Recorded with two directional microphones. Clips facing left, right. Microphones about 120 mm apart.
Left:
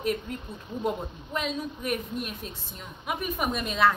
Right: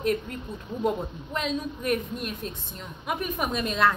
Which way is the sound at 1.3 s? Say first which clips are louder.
Right 1 dB; 5° left (ahead or behind).